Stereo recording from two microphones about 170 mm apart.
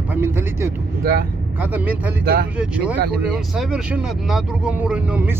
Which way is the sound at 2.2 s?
65° right (ahead or behind).